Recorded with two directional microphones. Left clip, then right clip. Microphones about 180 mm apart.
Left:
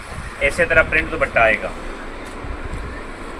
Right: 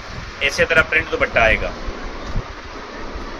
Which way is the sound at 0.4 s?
55° right (ahead or behind).